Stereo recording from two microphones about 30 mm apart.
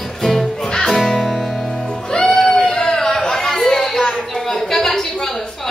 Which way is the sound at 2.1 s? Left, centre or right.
Left.